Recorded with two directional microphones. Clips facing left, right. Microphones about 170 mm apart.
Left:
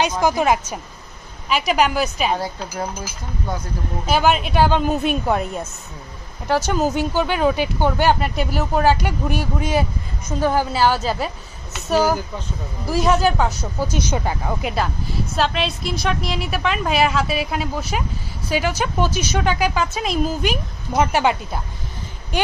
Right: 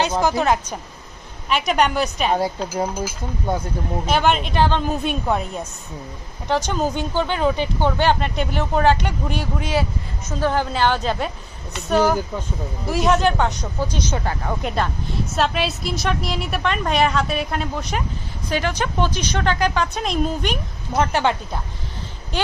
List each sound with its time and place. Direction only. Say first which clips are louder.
0.2 s a woman's voice: left 1 dB; 10° left (ahead or behind)
2.3 s speech: right 4 dB; 20° right (ahead or behind)
4.0 s a woman's voice: left 2 dB; 5° left (ahead or behind)